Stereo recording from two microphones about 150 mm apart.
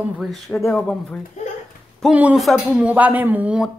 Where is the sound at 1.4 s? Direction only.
50° left (ahead or behind).